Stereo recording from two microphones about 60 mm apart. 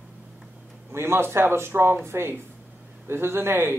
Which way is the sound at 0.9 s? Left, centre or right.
Right.